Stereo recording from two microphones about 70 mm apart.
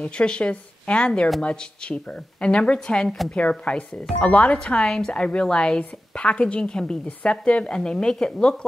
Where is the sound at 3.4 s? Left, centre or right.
Centre.